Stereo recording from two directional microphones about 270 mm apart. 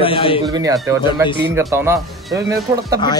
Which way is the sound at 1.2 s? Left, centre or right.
Centre.